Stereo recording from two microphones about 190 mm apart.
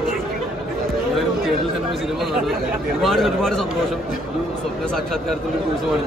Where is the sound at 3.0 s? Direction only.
Centre (ahead or behind).